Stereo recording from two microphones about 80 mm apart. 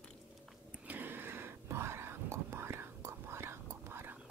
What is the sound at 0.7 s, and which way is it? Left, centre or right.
Whispering, right.